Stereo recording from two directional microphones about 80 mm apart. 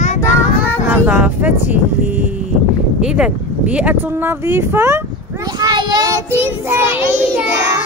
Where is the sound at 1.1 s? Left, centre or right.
Centre.